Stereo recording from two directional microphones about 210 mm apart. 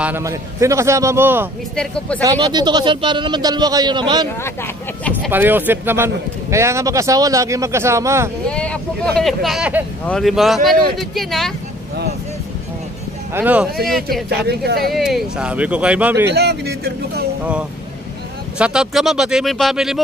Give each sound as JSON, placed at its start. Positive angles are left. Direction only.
{"t": 0.0, "sound": "a man's voice", "side_deg": -10}
{"t": 1.8, "sound": "speech", "side_deg": 5}
{"t": 2.2, "sound": "a man's voice", "side_deg": -20}
{"t": 5.3, "sound": "a man's voice", "side_deg": -10}
{"t": 8.5, "sound": "speech", "side_deg": 5}
{"t": 13.3, "sound": "a man's voice", "side_deg": -10}
{"t": 14.3, "sound": "speech", "side_deg": -50}
{"t": 15.0, "sound": "speech", "side_deg": 0}
{"t": 16.3, "sound": "speech", "side_deg": -50}
{"t": 18.6, "sound": "speech", "side_deg": -5}